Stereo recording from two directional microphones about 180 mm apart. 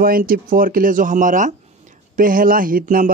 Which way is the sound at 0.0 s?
55° right (ahead or behind).